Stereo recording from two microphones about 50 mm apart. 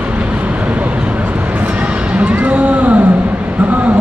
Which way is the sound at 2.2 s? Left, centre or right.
Right.